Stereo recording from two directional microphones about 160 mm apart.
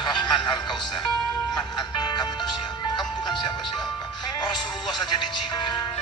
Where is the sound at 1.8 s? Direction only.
25° left (ahead or behind).